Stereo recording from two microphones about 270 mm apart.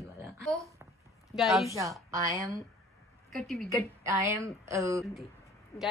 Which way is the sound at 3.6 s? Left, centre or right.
Centre.